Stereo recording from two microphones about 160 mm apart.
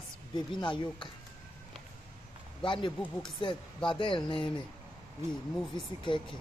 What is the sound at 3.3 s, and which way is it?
A man's voice, 30° left (ahead or behind).